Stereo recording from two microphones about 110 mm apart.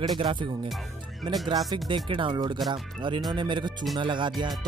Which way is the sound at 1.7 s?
50° right (ahead or behind).